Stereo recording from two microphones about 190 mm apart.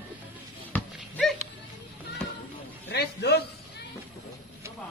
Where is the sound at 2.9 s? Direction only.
60° left (ahead or behind).